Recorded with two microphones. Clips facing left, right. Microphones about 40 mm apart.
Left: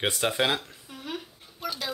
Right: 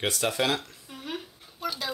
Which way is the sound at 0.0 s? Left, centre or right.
Left.